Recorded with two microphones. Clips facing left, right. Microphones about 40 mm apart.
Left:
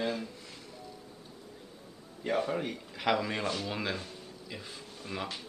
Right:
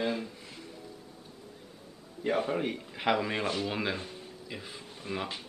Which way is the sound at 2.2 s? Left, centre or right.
Centre.